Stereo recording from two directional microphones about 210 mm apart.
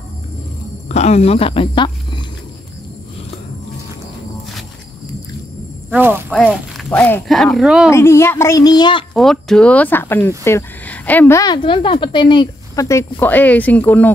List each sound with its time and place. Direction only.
0.8 s a woman's voice: 30° left (ahead or behind)
5.9 s a sound: 10° right (ahead or behind)
6.3 s speech: centre (ahead or behind)
7.9 s speech: 10° left (ahead or behind)
9.1 s speech: centre (ahead or behind)